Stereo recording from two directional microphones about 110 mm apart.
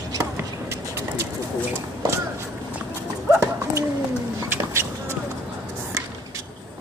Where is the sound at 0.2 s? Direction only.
25° right (ahead or behind).